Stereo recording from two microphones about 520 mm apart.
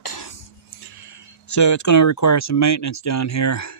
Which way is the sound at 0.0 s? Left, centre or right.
Left.